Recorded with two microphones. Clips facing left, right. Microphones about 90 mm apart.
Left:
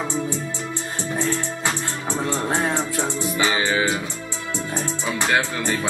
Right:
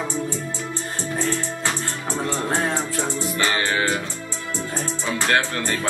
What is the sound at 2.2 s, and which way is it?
Music, 15° left (ahead or behind).